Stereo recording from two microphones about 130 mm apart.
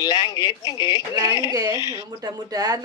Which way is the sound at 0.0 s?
30° left (ahead or behind).